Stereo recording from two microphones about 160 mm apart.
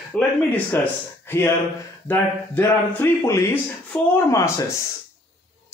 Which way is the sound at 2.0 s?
10° left (ahead or behind).